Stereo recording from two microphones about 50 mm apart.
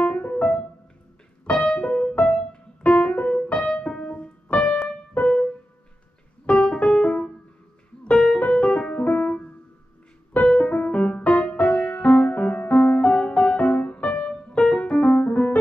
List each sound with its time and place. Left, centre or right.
0.1 s keyboard: left
1.4 s piano: left
3.1 s keyboard: left
3.6 s music: left
6.5 s music: centre
8.0 s piano: left
10.4 s music: left
14.5 s piano: left